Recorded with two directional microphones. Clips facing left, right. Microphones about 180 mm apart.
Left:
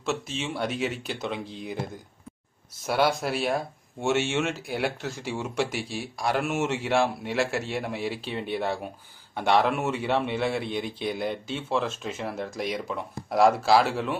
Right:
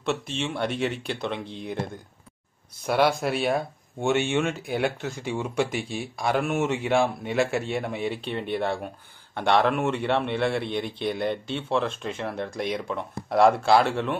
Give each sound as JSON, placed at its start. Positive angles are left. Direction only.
{"t": 0.4, "sound": "speech", "side_deg": 5}
{"t": 2.9, "sound": "speech", "side_deg": 0}